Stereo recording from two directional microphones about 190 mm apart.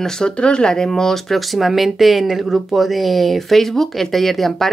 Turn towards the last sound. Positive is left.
turn(degrees=0)  # may be behind; listen again after turning